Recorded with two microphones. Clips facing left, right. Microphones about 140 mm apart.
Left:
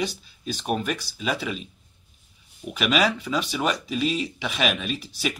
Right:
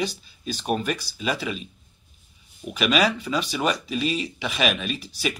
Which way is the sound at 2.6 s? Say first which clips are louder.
Right 1 dB; 5° left (ahead or behind).